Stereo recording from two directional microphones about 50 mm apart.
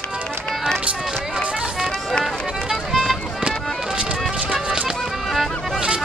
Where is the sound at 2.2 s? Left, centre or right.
Centre.